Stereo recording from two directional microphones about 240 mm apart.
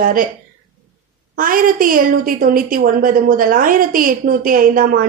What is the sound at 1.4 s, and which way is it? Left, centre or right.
A woman's voice, right.